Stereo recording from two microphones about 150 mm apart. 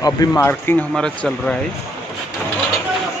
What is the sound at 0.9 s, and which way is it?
Speech, 5° left (ahead or behind).